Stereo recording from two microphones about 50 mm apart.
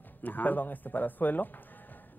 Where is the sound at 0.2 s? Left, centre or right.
Left.